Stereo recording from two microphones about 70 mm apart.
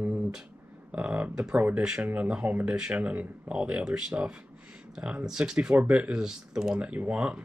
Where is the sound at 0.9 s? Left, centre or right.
Right.